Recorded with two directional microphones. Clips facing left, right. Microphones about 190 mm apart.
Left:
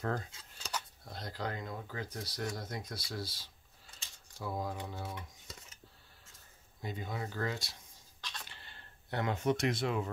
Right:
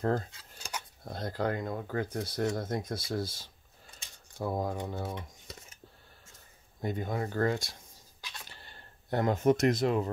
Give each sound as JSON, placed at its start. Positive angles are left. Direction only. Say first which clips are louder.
{"t": 0.0, "sound": "speech", "louder": "right 7 dB", "side_deg": -40}
{"t": 0.6, "sound": "a sound", "louder": "even", "side_deg": -10}
{"t": 1.0, "sound": "speech", "louder": "right 11 dB", "side_deg": -50}
{"t": 6.8, "sound": "speech", "louder": "right 7 dB", "side_deg": -50}
{"t": 9.1, "sound": "speech", "louder": "right 7 dB", "side_deg": -40}